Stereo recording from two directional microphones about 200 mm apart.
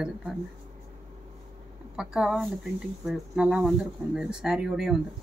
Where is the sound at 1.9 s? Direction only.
5° right (ahead or behind).